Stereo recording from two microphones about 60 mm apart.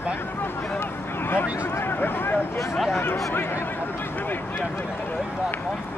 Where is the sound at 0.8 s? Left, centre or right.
Left.